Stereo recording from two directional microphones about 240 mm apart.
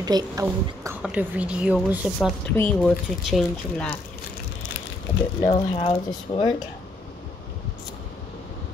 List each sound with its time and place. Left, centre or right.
0.0 s a woman's voice: centre
2.1 s speech: centre
5.4 s speech: left